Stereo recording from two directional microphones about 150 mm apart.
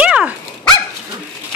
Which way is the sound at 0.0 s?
5° right (ahead or behind).